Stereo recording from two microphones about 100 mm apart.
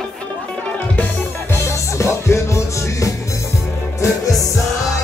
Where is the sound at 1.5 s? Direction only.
30° left (ahead or behind).